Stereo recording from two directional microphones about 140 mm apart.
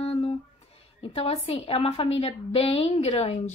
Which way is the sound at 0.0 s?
45° left (ahead or behind).